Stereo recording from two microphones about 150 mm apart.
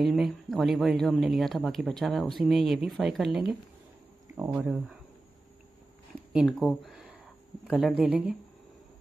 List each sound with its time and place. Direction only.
0.0 s speech: centre (ahead or behind)
4.4 s speech: 15° right (ahead or behind)
6.1 s speech: centre (ahead or behind)